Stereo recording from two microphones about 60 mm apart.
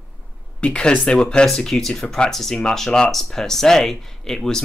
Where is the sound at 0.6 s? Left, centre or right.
Centre.